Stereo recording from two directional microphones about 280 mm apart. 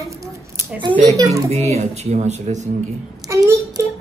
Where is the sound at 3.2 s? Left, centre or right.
Centre.